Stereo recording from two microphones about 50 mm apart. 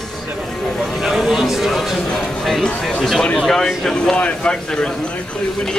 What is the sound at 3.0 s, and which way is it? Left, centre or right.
Speech, centre.